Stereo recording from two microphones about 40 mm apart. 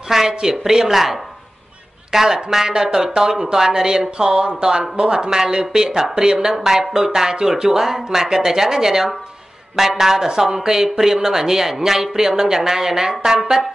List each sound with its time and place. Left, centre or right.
0.1 s speech: centre